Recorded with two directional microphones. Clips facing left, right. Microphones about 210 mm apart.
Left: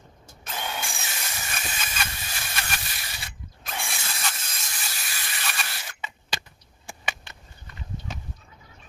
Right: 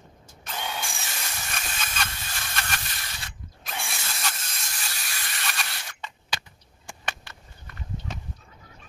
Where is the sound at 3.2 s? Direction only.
Centre (ahead or behind).